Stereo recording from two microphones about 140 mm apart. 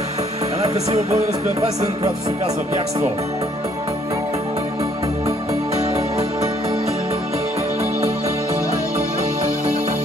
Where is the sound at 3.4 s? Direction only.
25° right (ahead or behind).